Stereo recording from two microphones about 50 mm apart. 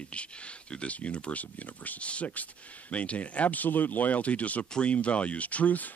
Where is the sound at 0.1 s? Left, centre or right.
Left.